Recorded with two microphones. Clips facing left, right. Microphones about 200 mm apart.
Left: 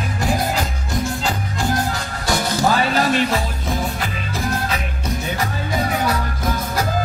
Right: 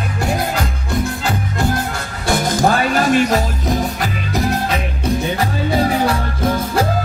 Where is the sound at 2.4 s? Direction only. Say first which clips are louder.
Right 3 dB; 45° right (ahead or behind); by 6.8 s 30° right (ahead or behind).